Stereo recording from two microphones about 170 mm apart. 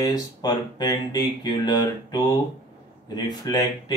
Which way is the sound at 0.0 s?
25° left (ahead or behind).